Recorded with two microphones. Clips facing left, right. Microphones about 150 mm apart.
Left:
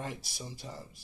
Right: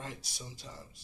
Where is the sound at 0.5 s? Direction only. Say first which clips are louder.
Left 5 dB; 55° left (ahead or behind).